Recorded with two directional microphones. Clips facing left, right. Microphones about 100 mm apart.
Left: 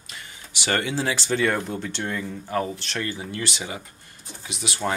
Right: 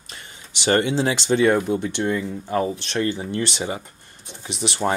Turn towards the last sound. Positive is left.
turn(degrees=-35)  # may be behind; listen again after turning